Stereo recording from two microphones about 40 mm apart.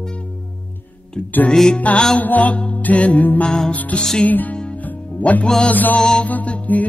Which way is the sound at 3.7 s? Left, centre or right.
Left.